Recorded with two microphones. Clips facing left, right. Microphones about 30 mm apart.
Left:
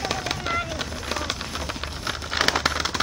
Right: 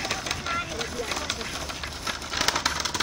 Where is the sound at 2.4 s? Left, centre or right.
Left.